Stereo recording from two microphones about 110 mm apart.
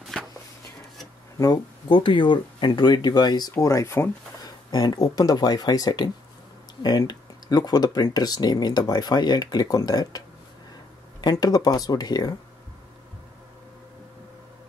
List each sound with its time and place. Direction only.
0.0 s a sound: centre (ahead or behind)
1.4 s speech: 40° left (ahead or behind)
3.5 s speech: 30° left (ahead or behind)
4.6 s speech: 40° left (ahead or behind)